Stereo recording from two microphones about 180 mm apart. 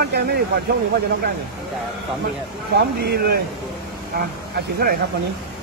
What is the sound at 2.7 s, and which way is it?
Speech, 60° right (ahead or behind).